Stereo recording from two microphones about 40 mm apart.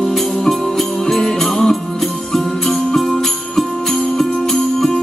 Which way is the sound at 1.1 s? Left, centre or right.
Centre.